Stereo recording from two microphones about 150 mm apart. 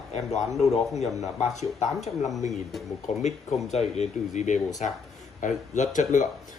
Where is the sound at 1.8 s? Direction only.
50° left (ahead or behind).